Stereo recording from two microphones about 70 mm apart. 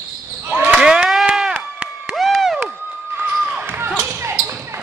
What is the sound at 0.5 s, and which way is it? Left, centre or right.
Basketball bounce, right.